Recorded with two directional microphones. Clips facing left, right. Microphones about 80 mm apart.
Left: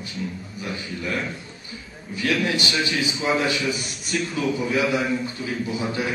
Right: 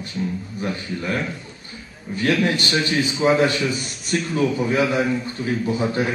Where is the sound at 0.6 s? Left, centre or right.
Right.